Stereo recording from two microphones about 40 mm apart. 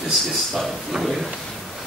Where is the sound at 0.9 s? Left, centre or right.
Centre.